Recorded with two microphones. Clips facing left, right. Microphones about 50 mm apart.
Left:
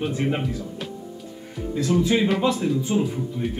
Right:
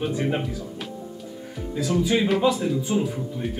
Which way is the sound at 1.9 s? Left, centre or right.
Centre.